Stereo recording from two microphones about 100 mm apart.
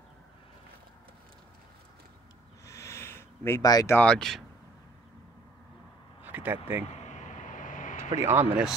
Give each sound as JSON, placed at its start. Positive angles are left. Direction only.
{"t": 2.6, "sound": "a sound", "side_deg": 30}
{"t": 3.6, "sound": "speech", "side_deg": 40}
{"t": 4.0, "sound": "speech", "side_deg": 5}
{"t": 6.2, "sound": "speech", "side_deg": -20}
{"t": 8.1, "sound": "speech", "side_deg": -25}